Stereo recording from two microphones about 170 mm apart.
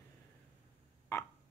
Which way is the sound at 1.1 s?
15° left (ahead or behind).